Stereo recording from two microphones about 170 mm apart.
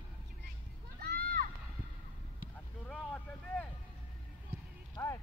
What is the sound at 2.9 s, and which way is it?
Vehicle, 5° left (ahead or behind).